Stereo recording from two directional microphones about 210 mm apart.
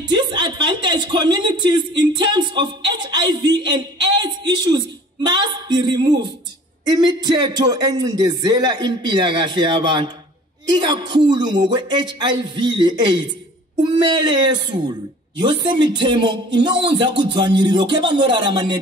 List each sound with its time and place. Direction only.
0.0 s a woman's voice: 20° right (ahead or behind)